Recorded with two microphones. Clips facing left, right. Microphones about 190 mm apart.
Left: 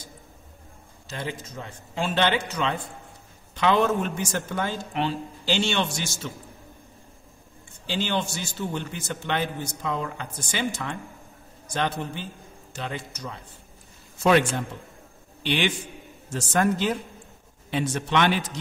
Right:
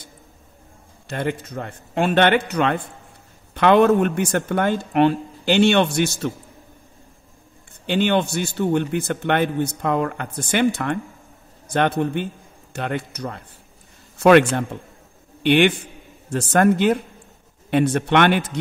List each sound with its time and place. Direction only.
1.0 s a man's voice: 60° right (ahead or behind)
7.8 s a man's voice: 60° right (ahead or behind)